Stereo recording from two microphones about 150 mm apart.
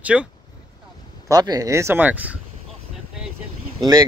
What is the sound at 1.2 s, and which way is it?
Speech, 25° right (ahead or behind).